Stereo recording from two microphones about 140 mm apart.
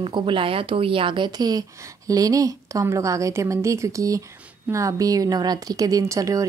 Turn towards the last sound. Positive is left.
turn(degrees=-25)  # may be behind; listen again after turning